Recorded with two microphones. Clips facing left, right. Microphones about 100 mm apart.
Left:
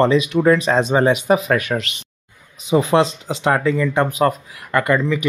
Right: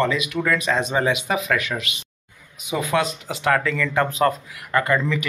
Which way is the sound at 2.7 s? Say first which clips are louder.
Left 7 dB; 30° left (ahead or behind).